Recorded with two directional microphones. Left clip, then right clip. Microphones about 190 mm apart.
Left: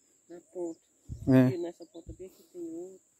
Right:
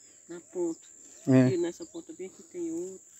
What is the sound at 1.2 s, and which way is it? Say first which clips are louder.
Speech: right 1 dB; 40° left (ahead or behind).